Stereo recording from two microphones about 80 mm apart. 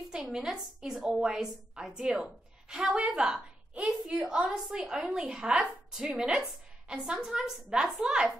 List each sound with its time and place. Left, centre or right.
0.1 s a woman's voice: centre